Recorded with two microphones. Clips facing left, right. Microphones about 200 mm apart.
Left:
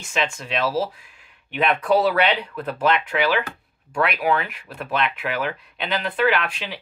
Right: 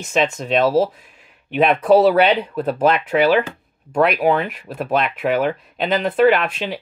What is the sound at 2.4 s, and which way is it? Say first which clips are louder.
Speech: right 5 dB; 30° right (ahead or behind).